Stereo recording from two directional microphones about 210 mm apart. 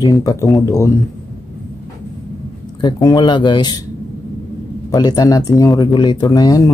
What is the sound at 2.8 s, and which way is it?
Speech, 20° left (ahead or behind).